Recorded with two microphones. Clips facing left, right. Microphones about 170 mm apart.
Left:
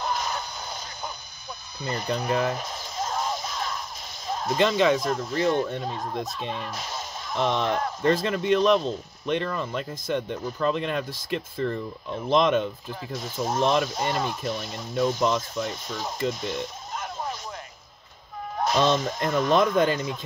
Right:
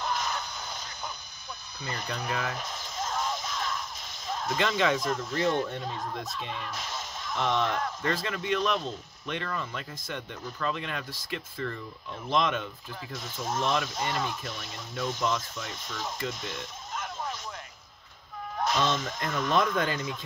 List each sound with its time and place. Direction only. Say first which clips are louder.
0.0 s crow: left 3 dB; 35° left (ahead or behind)
1.8 s speech: left 8 dB; 35° left (ahead or behind)
2.2 s music: left 7 dB; 35° left (ahead or behind)
4.3 s a sound: left 6 dB; 35° left (ahead or behind)
4.9 s speech: left 4 dB; 35° left (ahead or behind)
18.6 s speech: left 6 dB; 35° left (ahead or behind)